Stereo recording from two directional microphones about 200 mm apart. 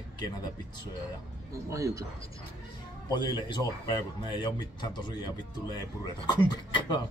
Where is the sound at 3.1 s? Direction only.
20° left (ahead or behind).